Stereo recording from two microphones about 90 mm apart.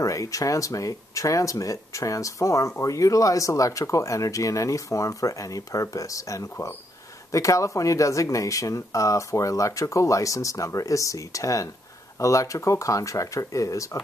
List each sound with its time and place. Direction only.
0.0 s speech: 40° left (ahead or behind)